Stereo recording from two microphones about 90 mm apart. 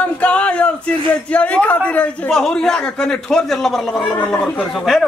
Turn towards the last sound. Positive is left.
turn(degrees=0)  # may be behind; listen again after turning